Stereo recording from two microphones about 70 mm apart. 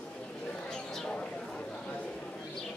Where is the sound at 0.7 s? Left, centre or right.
Centre.